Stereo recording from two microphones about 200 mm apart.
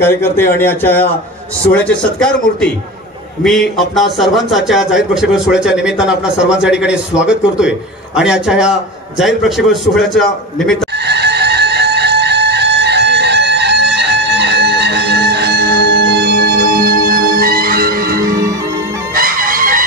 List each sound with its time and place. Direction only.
0.0 s a man's voice: 10° left (ahead or behind)
3.7 s a man's voice: centre (ahead or behind)
11.1 s chicken: 55° right (ahead or behind)